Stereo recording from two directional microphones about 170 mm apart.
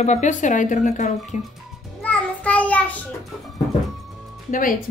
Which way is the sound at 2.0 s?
10° left (ahead or behind).